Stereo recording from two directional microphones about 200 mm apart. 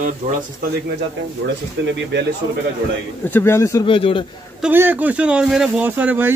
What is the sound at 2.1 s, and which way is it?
Speech, 60° right (ahead or behind).